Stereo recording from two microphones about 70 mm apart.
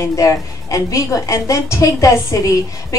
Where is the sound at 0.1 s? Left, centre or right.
Left.